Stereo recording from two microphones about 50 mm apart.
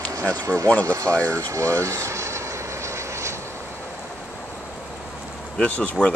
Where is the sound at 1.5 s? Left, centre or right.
Right.